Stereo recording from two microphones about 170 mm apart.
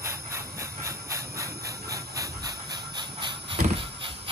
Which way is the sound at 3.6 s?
30° right (ahead or behind).